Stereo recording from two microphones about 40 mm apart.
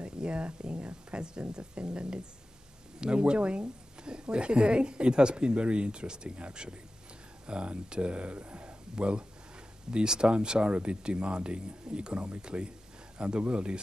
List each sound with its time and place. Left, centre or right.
0.0 s a woman's voice: right